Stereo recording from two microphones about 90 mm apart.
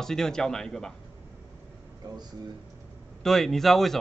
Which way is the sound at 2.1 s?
50° right (ahead or behind).